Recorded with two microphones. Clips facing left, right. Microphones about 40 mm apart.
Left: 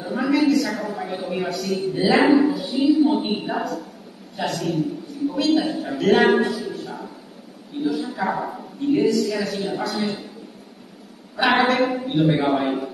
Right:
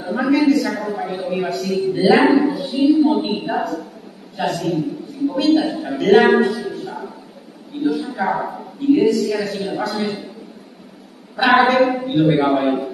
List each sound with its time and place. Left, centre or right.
0.0 s a sound: centre
2.0 s a man's voice: centre
11.3 s a man's voice: centre